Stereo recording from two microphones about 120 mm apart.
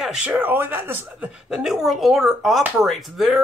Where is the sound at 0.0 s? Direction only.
5° right (ahead or behind).